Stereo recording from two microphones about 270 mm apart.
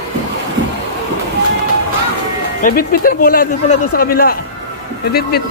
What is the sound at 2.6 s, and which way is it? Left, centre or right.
A man's voice, left.